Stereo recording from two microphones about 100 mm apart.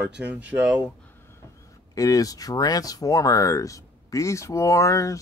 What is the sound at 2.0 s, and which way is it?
Speech, 35° left (ahead or behind).